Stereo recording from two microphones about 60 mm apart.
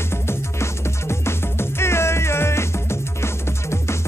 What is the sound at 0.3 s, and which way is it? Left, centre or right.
Music, left.